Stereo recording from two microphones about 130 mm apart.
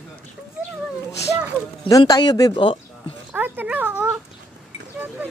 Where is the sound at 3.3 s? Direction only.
10° right (ahead or behind).